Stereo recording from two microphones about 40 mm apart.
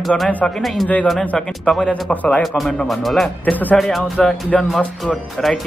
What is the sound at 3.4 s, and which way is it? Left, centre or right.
Speech, left.